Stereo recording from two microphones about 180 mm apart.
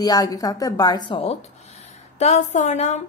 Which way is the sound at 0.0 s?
20° left (ahead or behind).